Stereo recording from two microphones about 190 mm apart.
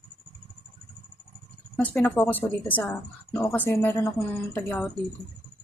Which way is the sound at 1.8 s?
10° left (ahead or behind).